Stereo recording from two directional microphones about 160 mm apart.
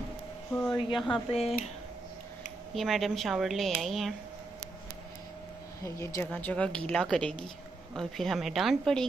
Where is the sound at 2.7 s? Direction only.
Centre (ahead or behind).